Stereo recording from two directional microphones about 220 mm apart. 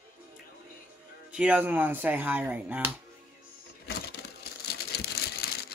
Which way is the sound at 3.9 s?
50° left (ahead or behind).